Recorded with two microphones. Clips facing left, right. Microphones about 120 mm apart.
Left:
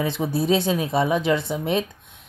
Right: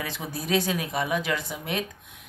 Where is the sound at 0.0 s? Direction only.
25° left (ahead or behind).